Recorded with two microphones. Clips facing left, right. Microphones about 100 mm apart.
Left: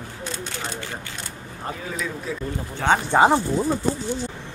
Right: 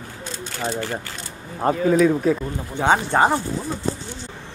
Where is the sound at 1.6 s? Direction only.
55° right (ahead or behind).